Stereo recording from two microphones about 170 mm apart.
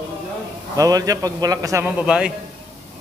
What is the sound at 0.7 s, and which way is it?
A man's voice, 20° right (ahead or behind).